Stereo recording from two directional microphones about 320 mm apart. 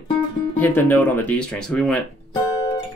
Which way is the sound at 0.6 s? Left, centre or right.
Centre.